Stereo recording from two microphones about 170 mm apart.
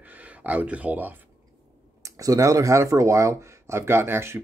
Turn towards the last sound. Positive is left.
turn(degrees=-15)  # may be behind; listen again after turning